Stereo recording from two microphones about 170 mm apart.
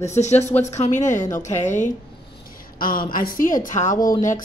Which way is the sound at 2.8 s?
55° left (ahead or behind).